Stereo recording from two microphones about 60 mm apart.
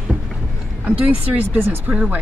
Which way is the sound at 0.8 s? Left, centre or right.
Right.